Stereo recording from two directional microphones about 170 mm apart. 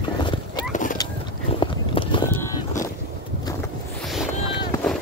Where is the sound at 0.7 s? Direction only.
50° left (ahead or behind).